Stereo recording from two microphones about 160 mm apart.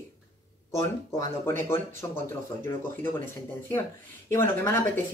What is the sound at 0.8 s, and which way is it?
Speech, 20° left (ahead or behind).